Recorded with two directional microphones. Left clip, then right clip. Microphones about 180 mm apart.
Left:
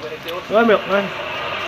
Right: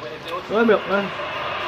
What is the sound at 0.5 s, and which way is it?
Speech, 5° right (ahead or behind).